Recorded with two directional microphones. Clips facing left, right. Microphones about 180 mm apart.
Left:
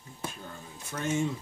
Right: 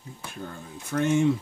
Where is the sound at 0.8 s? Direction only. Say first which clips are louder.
Right 7 dB; 60° right (ahead or behind).